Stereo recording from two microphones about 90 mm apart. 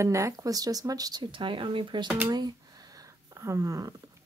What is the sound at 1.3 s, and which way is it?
Speech, 70° right (ahead or behind).